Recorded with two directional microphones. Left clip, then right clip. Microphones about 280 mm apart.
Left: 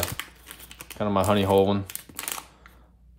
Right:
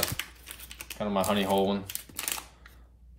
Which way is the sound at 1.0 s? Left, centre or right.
Left.